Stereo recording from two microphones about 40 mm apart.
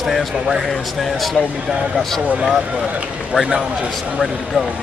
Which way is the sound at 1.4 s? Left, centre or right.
Left.